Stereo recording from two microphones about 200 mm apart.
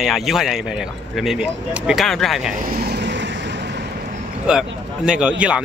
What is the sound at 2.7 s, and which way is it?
Vehicle, 55° right (ahead or behind).